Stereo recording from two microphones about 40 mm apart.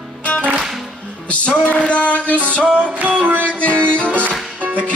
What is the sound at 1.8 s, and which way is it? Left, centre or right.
Music, left.